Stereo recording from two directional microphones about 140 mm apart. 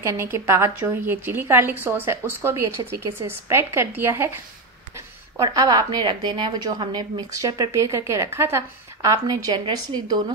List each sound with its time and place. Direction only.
0.0 s a woman's voice: 20° right (ahead or behind)